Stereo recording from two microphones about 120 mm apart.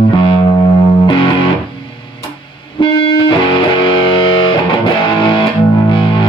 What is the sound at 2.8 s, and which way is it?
Music, 40° left (ahead or behind).